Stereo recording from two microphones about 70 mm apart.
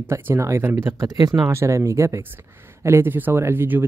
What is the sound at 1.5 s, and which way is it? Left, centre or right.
Speech, right.